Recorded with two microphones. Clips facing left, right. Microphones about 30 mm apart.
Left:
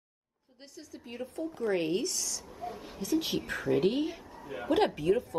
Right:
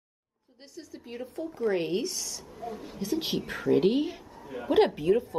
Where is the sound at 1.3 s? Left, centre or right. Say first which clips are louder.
Right 4 dB; right.